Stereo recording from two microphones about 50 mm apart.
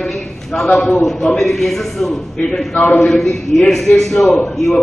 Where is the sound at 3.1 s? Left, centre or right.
Centre.